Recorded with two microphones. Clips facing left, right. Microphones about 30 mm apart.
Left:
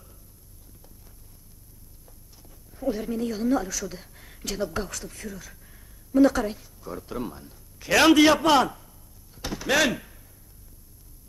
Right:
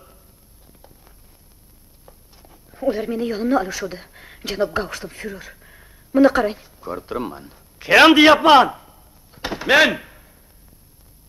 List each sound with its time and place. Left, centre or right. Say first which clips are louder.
2.0 s speech: right 7 dB; right